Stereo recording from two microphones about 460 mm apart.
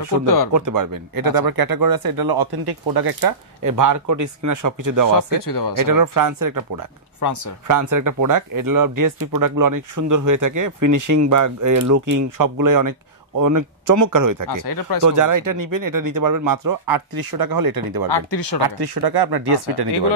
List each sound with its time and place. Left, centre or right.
0.5 s speech: right
5.4 s speech: left
5.9 s speech: right
7.2 s speech: left
7.6 s speech: right
14.6 s speech: left
15.0 s speech: right
18.1 s speech: left
18.6 s speech: right